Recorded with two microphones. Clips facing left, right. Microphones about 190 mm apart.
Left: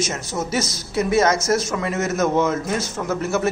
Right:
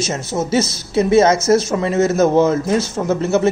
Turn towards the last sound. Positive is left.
turn(degrees=-25)  # may be behind; listen again after turning